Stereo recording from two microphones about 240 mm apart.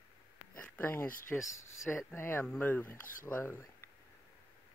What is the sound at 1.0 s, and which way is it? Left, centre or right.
Speech, left.